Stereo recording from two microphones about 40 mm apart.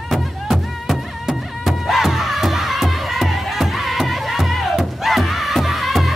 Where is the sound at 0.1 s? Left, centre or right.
Centre.